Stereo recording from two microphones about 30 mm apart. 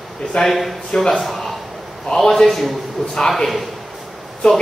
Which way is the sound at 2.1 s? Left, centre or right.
Centre.